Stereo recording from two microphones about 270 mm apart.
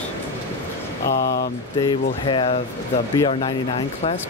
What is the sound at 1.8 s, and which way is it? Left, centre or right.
Speech, centre.